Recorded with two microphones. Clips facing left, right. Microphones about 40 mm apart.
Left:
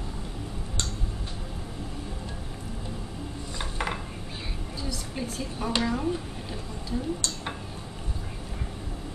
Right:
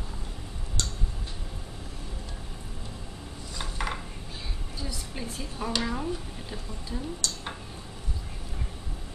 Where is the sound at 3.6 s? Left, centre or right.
Centre.